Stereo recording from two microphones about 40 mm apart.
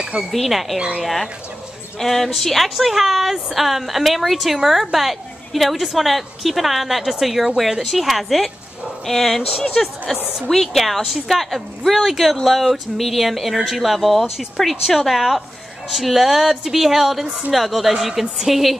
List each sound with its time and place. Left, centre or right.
0.3 s a woman's voice: centre
0.7 s speech: right
1.0 s a woman's voice: centre
11.0 s a woman's voice: centre
11.2 s a woman's voice: centre